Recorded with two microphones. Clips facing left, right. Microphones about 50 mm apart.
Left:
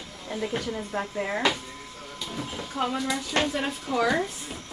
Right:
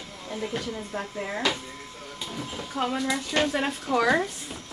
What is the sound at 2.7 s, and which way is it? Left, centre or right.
Speech, centre.